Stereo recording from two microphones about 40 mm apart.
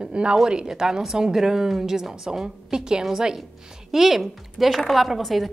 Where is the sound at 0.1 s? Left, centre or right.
Right.